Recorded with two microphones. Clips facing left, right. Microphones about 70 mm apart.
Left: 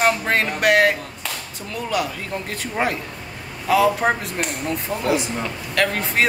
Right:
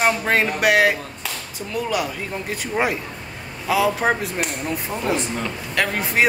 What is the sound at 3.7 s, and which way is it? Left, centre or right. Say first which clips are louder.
Speech: left 2 dB; centre.